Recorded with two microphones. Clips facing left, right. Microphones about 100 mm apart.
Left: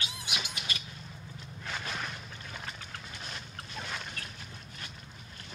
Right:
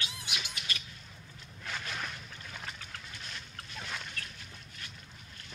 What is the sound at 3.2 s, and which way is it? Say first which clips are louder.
Boat: left 3 dB; 20° left (ahead or behind).